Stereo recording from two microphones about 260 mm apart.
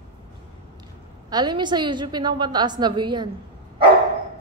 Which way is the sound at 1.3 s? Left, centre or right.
Centre.